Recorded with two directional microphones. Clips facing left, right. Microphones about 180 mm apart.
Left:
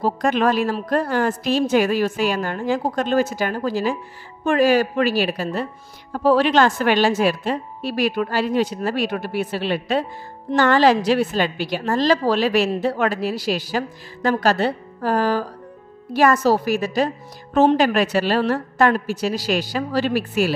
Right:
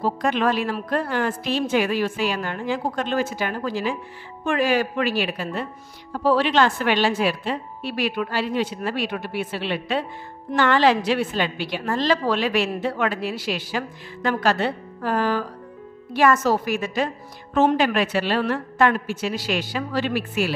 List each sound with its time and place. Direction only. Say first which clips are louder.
0.0 s a woman's voice: left 3 dB; 45° left (ahead or behind)